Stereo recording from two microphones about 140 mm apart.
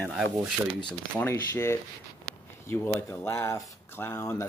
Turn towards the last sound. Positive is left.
turn(degrees=20)  # may be behind; listen again after turning